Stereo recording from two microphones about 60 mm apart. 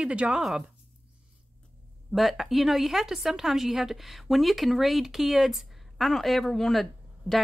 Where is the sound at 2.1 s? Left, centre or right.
Centre.